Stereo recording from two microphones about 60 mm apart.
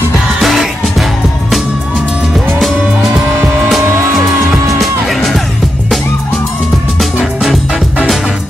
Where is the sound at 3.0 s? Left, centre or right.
Centre.